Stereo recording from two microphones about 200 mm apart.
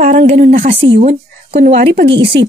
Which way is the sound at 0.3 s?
40° right (ahead or behind).